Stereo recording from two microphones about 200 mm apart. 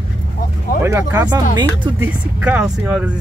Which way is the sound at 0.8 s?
15° right (ahead or behind).